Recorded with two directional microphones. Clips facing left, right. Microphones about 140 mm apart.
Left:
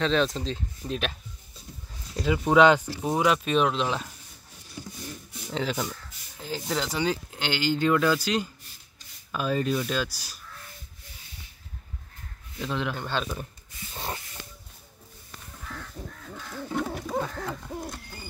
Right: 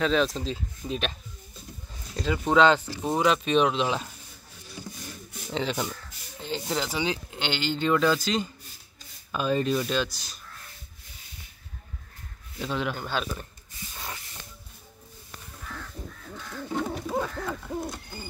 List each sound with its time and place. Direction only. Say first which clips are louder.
0.0 s speech: even; 5° right (ahead or behind)
2.1 s speech: left 2 dB; 10° left (ahead or behind)
5.5 s speech: even; centre (ahead or behind)
12.5 s speech: even; 5° right (ahead or behind)
13.9 s spray: left 5 dB; 30° left (ahead or behind)
16.8 s bird: right 1 dB; centre (ahead or behind)
17.6 s speech: right 3 dB; centre (ahead or behind)